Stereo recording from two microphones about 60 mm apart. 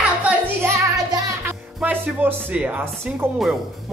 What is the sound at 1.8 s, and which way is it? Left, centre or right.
Music, right.